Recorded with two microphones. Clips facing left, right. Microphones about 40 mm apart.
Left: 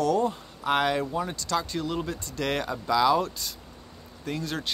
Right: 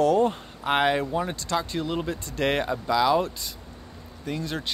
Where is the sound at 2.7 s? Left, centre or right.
Centre.